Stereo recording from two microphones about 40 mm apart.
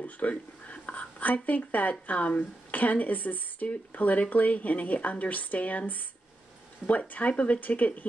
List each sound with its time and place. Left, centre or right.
0.0 s speech: left